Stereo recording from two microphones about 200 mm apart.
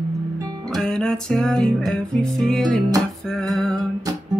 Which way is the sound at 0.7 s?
Centre (ahead or behind).